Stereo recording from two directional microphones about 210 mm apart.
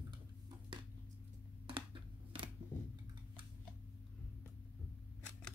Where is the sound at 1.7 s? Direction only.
25° right (ahead or behind).